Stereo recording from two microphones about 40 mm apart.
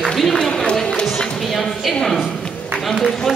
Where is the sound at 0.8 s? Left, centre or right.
Left.